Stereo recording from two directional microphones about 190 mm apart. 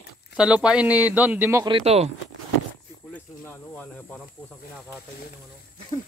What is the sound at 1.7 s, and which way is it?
Speech, 30° right (ahead or behind).